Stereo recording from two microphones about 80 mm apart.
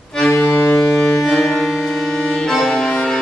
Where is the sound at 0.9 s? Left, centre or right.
Centre.